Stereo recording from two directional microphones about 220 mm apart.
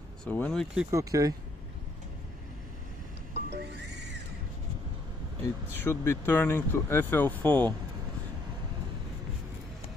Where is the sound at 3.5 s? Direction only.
50° right (ahead or behind).